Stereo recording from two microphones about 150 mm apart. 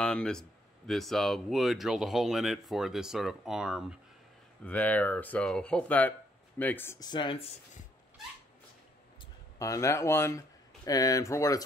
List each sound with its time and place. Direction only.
0.0 s speech: 5° left (ahead or behind)
4.6 s speech: 10° left (ahead or behind)
7.0 s speech: 30° left (ahead or behind)
9.6 s speech: 20° left (ahead or behind)